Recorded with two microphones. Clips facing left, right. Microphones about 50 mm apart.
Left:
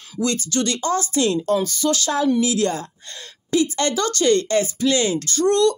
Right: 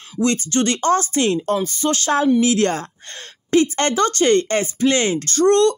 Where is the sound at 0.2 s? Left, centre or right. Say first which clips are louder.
Right 3 dB; right.